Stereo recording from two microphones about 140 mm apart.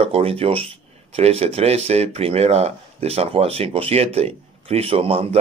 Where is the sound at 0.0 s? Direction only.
45° right (ahead or behind).